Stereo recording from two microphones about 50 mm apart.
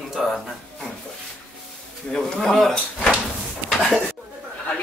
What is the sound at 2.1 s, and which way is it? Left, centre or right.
Speech, centre.